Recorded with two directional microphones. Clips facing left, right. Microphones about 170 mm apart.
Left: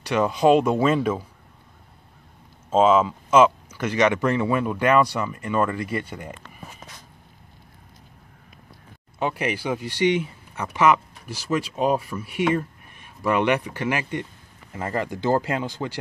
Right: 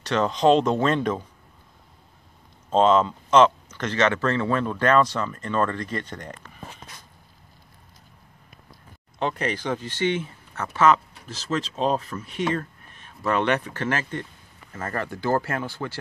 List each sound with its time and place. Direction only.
0.0 s speech: 10° left (ahead or behind)
2.7 s speech: 5° left (ahead or behind)
9.2 s speech: 10° left (ahead or behind)